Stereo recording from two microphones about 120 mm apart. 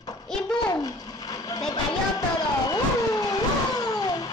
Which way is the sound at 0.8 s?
30° left (ahead or behind).